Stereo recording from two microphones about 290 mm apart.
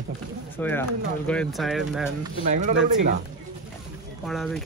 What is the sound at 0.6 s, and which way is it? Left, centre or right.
Speech, centre.